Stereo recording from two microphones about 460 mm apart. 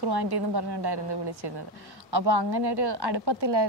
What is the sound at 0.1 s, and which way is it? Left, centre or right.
A woman's voice, right.